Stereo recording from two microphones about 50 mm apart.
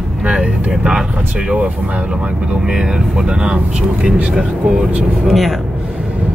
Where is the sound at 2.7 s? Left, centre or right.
Centre.